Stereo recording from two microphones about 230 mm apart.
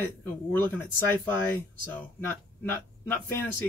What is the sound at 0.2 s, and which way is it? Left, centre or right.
Speech, centre.